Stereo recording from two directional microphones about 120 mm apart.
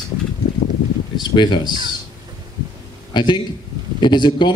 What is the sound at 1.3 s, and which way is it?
Speech, 40° left (ahead or behind).